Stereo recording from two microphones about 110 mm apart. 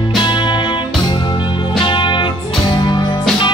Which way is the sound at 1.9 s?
45° left (ahead or behind).